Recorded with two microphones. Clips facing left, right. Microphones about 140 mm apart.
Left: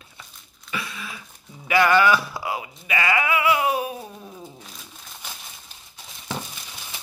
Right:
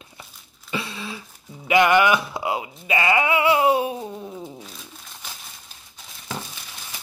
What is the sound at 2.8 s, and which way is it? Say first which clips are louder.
Wail: right 3 dB; 25° right (ahead or behind).